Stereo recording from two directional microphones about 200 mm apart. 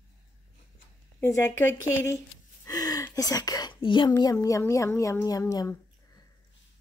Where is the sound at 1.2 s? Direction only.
15° left (ahead or behind).